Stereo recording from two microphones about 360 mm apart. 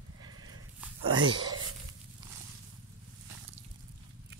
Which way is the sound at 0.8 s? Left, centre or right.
Centre.